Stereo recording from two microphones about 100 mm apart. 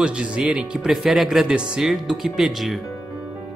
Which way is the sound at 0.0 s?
10° right (ahead or behind).